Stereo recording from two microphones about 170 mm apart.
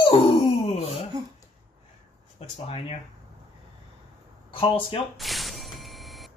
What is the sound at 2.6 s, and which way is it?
Speech, 35° left (ahead or behind).